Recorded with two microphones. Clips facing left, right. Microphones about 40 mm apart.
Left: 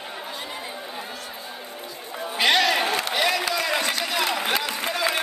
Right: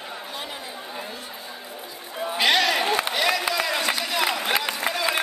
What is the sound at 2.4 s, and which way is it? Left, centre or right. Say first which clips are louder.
Chatter: left 1 dB; centre.